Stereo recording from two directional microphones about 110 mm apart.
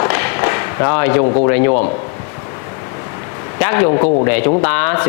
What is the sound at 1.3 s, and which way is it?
Speech, 25° left (ahead or behind).